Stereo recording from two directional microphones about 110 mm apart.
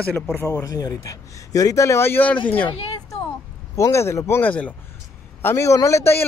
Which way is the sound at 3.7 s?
25° left (ahead or behind).